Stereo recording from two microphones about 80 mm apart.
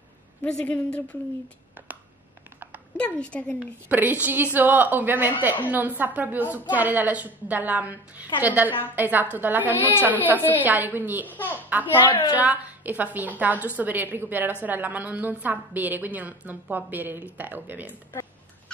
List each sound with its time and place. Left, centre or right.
0.4 s a woman's voice: centre
3.0 s a woman's voice: centre
3.9 s a woman's voice: right
12.0 s a woman's voice: left
12.4 s a woman's voice: centre